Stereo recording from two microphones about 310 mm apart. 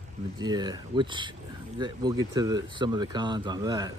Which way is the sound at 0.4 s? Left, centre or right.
Centre.